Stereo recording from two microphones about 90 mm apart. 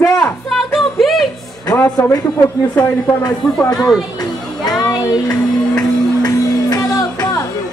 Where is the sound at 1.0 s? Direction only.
Centre (ahead or behind).